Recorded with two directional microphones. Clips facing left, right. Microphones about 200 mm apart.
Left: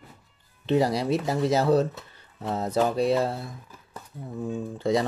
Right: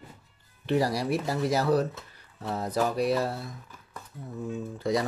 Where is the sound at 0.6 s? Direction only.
20° left (ahead or behind).